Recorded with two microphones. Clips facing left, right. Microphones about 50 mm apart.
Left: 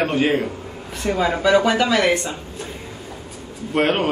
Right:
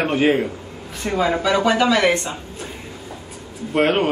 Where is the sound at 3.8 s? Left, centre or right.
Centre.